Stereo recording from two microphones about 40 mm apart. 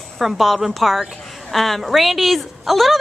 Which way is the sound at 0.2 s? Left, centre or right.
Centre.